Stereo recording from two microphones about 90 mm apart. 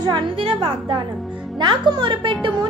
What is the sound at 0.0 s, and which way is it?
A woman's voice, 65° right (ahead or behind).